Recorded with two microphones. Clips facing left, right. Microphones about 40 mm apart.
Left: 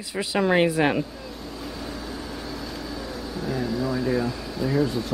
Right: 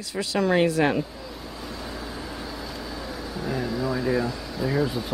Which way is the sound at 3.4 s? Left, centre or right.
Centre.